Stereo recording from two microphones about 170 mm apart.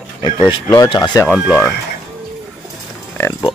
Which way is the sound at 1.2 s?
Centre (ahead or behind).